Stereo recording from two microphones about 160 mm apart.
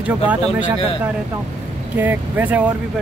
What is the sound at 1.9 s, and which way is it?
Speech, 10° right (ahead or behind).